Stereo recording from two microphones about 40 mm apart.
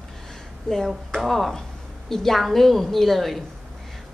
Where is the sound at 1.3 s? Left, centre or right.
Centre.